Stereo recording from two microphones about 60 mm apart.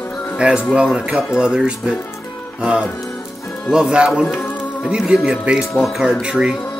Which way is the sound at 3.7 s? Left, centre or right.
Centre.